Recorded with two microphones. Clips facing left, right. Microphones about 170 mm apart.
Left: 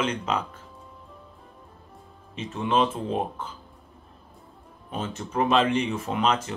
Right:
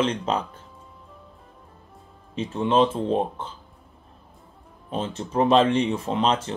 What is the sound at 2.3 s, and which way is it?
Speech, 30° right (ahead or behind).